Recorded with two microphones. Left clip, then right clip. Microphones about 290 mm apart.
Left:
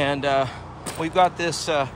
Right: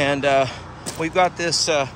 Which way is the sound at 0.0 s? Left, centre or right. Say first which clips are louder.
Right 3 dB; centre.